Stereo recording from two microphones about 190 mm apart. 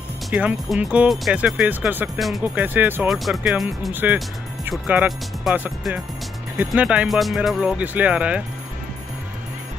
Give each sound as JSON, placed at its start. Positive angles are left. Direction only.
{"t": 0.3, "sound": "speech", "side_deg": -5}